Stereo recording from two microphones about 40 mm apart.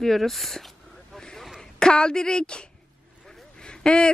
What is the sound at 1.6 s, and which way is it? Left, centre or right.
A woman's voice, centre.